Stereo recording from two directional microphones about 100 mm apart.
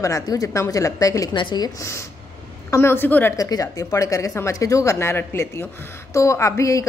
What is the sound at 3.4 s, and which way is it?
A woman's voice, 35° left (ahead or behind).